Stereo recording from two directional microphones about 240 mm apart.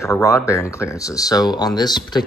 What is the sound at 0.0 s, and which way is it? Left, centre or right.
Speech, centre.